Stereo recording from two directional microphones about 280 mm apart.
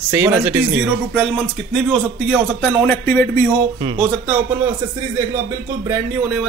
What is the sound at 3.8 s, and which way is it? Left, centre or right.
Speech, centre.